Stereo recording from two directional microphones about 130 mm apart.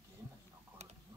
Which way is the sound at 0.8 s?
60° right (ahead or behind).